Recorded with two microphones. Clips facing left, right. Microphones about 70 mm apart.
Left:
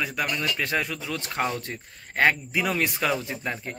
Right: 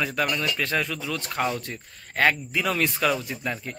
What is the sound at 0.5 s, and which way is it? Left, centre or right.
Speech, centre.